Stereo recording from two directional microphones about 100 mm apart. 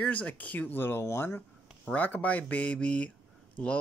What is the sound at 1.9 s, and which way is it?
Speech, 15° left (ahead or behind).